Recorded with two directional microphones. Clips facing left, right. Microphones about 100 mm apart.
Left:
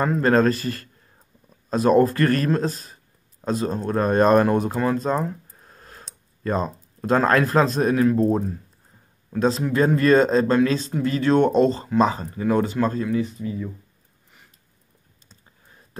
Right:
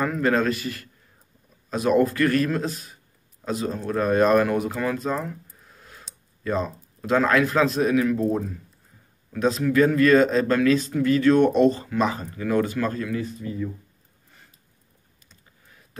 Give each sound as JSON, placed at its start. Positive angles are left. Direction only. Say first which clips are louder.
{"t": 0.0, "sound": "speech", "louder": "left 4 dB", "side_deg": 35}